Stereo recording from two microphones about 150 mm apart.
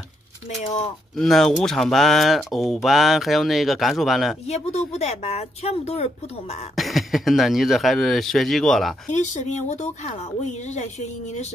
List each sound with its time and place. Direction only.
0.6 s speech: 50° left (ahead or behind)
1.1 s speech: centre (ahead or behind)
4.5 s speech: 45° left (ahead or behind)
6.7 s speech: centre (ahead or behind)
9.1 s speech: 50° left (ahead or behind)